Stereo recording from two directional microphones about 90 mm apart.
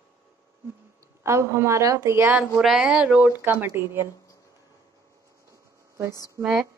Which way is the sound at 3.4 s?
20° right (ahead or behind).